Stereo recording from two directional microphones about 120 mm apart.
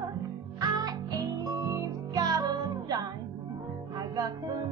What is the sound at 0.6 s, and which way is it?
Music, 30° right (ahead or behind).